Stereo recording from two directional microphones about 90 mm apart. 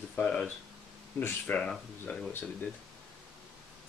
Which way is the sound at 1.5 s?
15° left (ahead or behind).